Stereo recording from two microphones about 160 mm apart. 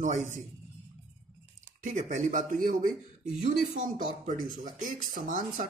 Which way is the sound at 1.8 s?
50° right (ahead or behind).